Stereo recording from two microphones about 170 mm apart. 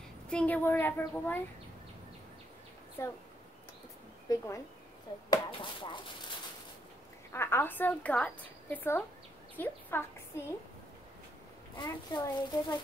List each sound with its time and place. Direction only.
0.3 s a child's voice: 10° left (ahead or behind)
3.0 s a child's voice: 15° left (ahead or behind)
4.3 s a child's voice: 20° left (ahead or behind)
7.3 s a child's voice: 15° left (ahead or behind)
11.7 s a child's voice: 25° left (ahead or behind)